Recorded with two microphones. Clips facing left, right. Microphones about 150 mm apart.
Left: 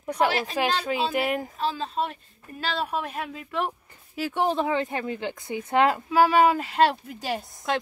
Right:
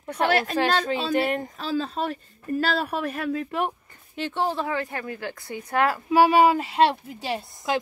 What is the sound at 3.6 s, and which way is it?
Speech, 5° left (ahead or behind).